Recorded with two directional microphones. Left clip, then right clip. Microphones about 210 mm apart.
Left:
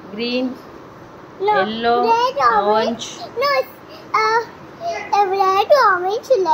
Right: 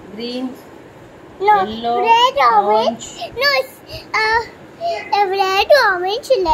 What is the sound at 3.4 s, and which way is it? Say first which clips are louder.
A child's voice: right 2 dB; 45° right (ahead or behind).